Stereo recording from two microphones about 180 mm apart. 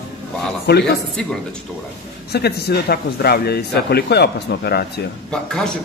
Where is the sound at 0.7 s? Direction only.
65° left (ahead or behind).